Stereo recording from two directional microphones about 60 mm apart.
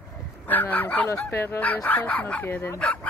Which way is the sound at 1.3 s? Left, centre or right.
Left.